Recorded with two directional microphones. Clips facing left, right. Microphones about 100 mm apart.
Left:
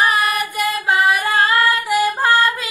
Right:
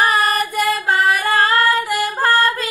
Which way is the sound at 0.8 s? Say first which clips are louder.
Left 3 dB; 5° left (ahead or behind).